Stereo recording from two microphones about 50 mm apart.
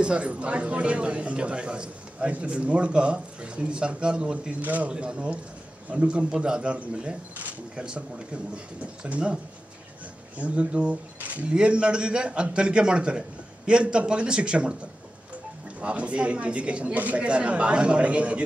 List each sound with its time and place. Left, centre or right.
0.0 s speech: right
4.9 s speech: right
11.5 s speech: centre
15.8 s speech: right